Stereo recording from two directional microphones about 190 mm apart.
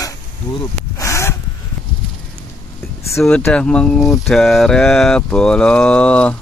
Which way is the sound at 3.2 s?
5° left (ahead or behind).